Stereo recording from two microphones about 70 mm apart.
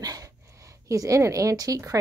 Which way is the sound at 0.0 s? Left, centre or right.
Right.